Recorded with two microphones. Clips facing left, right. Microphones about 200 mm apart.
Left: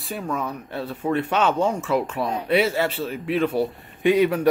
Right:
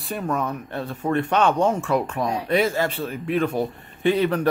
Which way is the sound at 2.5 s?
45° right (ahead or behind).